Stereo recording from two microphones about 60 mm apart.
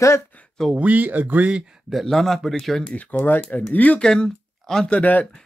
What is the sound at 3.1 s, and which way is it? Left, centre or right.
Speech, left.